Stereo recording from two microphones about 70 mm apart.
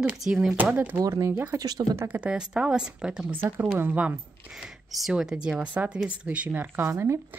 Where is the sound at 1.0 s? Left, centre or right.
Right.